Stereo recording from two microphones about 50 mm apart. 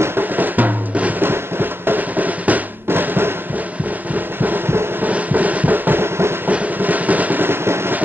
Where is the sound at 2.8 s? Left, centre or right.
Right.